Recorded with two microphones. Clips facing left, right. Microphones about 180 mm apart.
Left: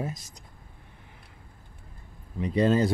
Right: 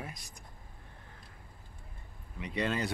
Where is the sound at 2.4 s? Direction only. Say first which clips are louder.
Left 10 dB; 35° left (ahead or behind).